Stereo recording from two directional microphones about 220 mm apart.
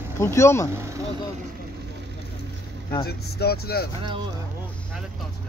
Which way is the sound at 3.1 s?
45° left (ahead or behind).